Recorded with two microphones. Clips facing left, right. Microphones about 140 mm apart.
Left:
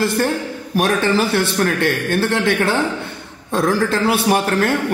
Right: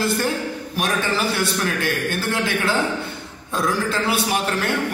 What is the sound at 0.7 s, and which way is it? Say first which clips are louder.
A man's voice: left 7 dB; 50° left (ahead or behind).